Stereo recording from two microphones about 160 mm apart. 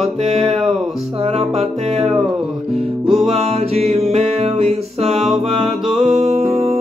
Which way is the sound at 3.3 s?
40° right (ahead or behind).